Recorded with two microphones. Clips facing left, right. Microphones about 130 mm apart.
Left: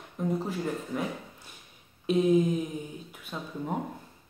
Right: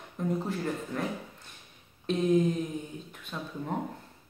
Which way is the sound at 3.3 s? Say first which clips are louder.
Even; 10° left (ahead or behind).